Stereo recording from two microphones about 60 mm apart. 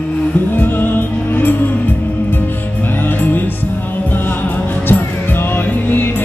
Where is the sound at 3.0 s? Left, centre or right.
Left.